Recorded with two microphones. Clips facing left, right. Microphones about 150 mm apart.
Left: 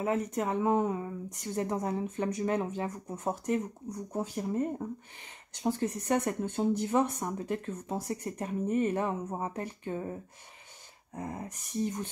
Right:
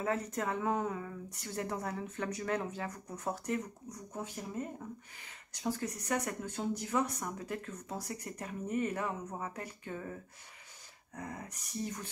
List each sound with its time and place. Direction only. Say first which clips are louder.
0.0 s speech: left 4 dB; 20° left (ahead or behind)
4.1 s speech: left 8 dB; 35° left (ahead or behind)